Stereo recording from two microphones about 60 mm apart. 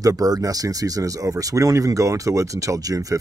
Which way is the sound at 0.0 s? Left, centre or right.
Right.